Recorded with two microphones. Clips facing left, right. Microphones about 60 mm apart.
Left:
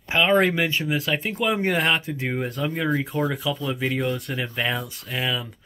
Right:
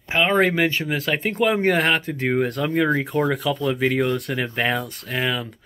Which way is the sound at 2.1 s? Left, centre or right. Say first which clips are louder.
Right 6 dB; right.